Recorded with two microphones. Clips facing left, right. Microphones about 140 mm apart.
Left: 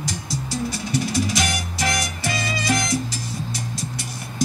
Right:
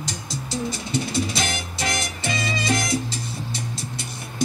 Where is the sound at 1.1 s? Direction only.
25° right (ahead or behind).